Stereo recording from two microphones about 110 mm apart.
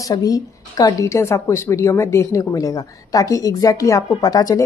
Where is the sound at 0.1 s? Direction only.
35° left (ahead or behind).